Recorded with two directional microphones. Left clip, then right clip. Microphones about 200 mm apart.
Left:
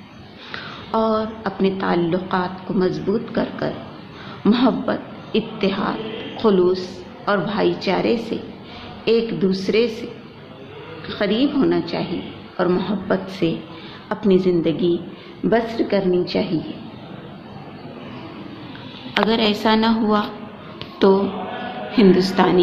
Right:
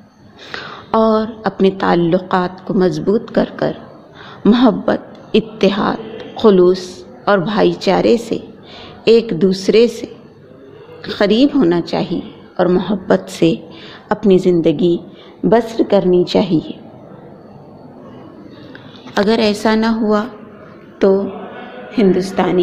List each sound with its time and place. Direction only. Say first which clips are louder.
0.5 s a woman's voice: right 6 dB; 45° right (ahead or behind)
11.1 s a woman's voice: right 7 dB; 50° right (ahead or behind)
19.2 s a woman's voice: right 4 dB; 30° right (ahead or behind)
21.0 s a woman's voice: right 3 dB; 15° right (ahead or behind)